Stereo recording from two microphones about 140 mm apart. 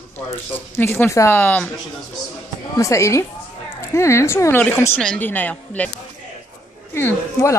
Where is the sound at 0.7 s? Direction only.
15° left (ahead or behind).